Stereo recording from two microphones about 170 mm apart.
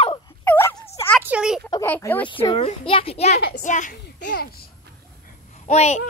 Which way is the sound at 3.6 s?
50° left (ahead or behind).